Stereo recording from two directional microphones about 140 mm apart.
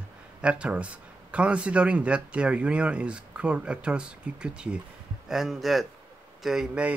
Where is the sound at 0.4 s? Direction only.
10° right (ahead or behind).